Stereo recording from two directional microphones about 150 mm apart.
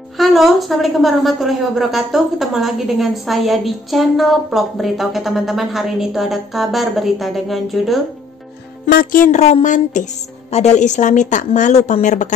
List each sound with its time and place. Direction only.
0.2 s a woman's voice: centre (ahead or behind)
8.8 s a woman's voice: 75° left (ahead or behind); by 12.3 s 55° left (ahead or behind)